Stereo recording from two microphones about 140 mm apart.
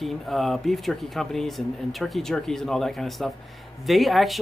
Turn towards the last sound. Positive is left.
turn(degrees=0)  # may be behind; listen again after turning